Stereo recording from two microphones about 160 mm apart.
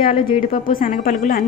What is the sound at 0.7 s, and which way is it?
Speech, 60° left (ahead or behind).